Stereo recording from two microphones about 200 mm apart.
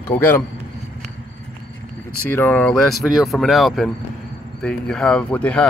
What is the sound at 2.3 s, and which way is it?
Speech, 10° left (ahead or behind).